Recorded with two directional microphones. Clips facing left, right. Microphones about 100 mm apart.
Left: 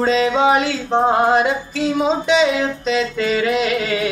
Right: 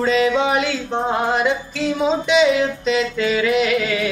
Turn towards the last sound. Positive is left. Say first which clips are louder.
# right 1 dB
turn(degrees=35)  # may be behind; listen again after turning